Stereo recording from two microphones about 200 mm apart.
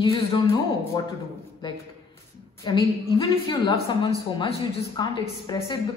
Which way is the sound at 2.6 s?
25° left (ahead or behind).